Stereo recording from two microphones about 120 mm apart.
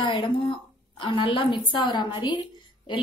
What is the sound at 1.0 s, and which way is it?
A woman's voice, 40° left (ahead or behind).